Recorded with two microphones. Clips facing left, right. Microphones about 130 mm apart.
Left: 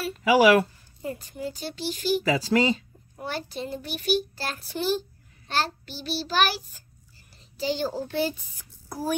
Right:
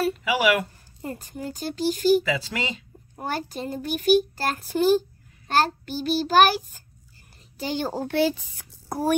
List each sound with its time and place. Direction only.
0.2 s speech: 40° left (ahead or behind)
1.0 s a child's voice: 45° right (ahead or behind)
2.2 s speech: 40° left (ahead or behind)
3.2 s a child's voice: 45° right (ahead or behind); by 8.6 s 75° right (ahead or behind)
8.8 s a sound: 60° right (ahead or behind)